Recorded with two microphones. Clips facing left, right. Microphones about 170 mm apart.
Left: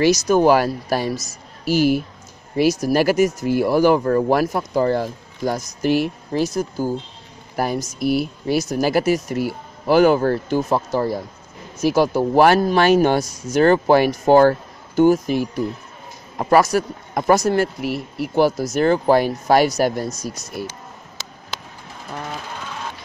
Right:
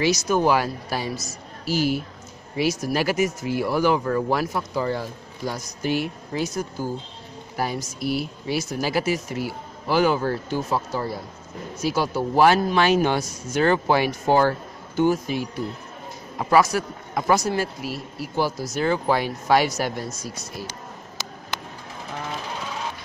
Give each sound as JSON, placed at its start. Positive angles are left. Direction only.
{"t": 0.0, "sound": "speech", "side_deg": 40}
{"t": 2.5, "sound": "speech", "side_deg": 40}
{"t": 7.5, "sound": "speech", "side_deg": 50}